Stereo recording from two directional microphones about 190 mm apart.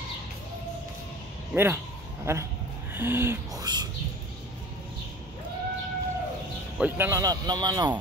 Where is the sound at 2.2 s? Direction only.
15° right (ahead or behind).